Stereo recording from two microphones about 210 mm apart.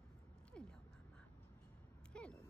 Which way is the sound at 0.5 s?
5° left (ahead or behind).